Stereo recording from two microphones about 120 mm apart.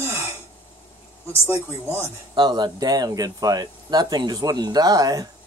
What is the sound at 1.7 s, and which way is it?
Speech, 20° left (ahead or behind).